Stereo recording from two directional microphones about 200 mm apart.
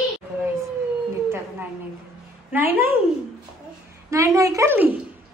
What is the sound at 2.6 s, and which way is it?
Speech, 45° right (ahead or behind).